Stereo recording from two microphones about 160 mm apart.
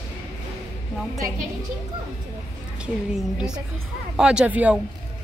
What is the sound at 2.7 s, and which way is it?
A woman's voice, 5° right (ahead or behind).